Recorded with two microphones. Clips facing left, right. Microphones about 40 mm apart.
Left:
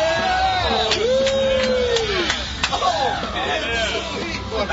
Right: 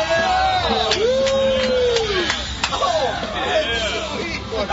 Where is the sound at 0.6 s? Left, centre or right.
Centre.